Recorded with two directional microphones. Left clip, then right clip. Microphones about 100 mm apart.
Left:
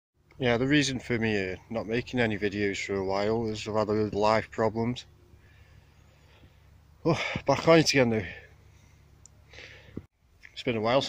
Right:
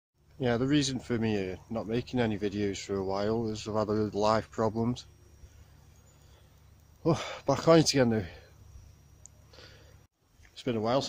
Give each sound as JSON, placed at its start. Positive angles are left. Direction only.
{"t": 0.4, "sound": "speech", "side_deg": -15}
{"t": 7.0, "sound": "speech", "side_deg": -30}
{"t": 9.5, "sound": "a sound", "side_deg": -35}
{"t": 10.5, "sound": "speech", "side_deg": -25}